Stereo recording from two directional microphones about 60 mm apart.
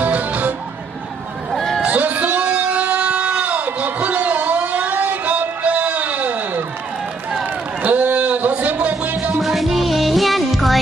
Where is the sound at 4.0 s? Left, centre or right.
Right.